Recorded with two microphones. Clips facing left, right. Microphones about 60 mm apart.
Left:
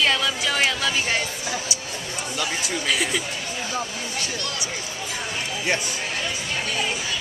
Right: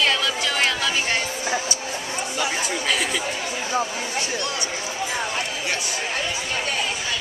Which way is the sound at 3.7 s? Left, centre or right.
Right.